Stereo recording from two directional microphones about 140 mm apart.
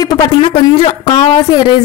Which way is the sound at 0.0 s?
30° left (ahead or behind).